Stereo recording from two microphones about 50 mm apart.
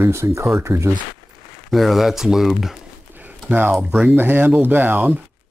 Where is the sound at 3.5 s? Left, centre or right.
Right.